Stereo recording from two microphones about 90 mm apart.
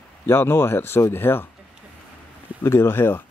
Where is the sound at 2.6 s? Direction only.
25° left (ahead or behind).